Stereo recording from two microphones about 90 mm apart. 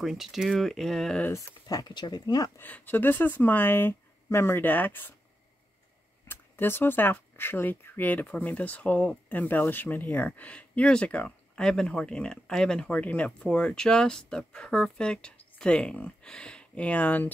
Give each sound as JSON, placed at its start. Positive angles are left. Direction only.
{"t": 0.0, "sound": "speech", "side_deg": 0}
{"t": 1.3, "sound": "speech", "side_deg": 45}
{"t": 2.6, "sound": "speech", "side_deg": 20}
{"t": 6.2, "sound": "speech", "side_deg": 25}